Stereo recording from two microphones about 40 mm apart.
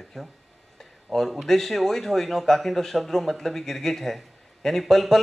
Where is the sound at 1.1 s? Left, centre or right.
Centre.